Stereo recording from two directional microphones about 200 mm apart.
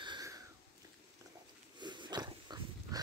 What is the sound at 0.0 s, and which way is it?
Sniff, 20° right (ahead or behind).